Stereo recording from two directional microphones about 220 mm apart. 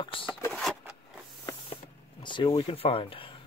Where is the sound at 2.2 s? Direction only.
20° left (ahead or behind).